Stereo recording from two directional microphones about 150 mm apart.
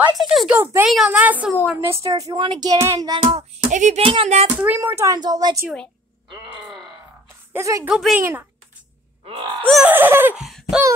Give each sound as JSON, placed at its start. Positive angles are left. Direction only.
{"t": 0.2, "sound": "a woman's voice", "side_deg": 0}
{"t": 1.8, "sound": "child singing", "side_deg": -20}
{"t": 3.6, "sound": "speech", "side_deg": -55}
{"t": 4.0, "sound": "speech", "side_deg": -40}
{"t": 4.6, "sound": "child singing", "side_deg": -15}
{"t": 6.3, "sound": "wail", "side_deg": -5}
{"t": 7.2, "sound": "a sound", "side_deg": -20}
{"t": 7.9, "sound": "speech", "side_deg": -5}
{"t": 8.2, "sound": "a woman's voice", "side_deg": -15}
{"t": 9.6, "sound": "speech", "side_deg": 0}
{"t": 9.8, "sound": "a woman's voice", "side_deg": -15}
{"t": 10.4, "sound": "a sound", "side_deg": 0}